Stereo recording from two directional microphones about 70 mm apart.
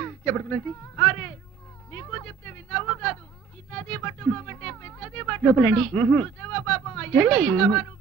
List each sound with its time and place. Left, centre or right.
0.0 s speech: left
1.9 s a sound: left
5.5 s a man's voice: centre